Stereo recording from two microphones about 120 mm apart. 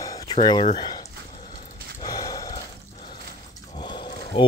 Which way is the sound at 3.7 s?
40° left (ahead or behind).